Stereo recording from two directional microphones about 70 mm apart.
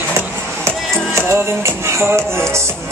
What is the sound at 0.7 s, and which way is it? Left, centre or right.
Music, right.